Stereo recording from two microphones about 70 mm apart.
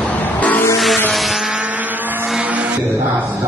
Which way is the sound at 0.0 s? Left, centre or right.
Left.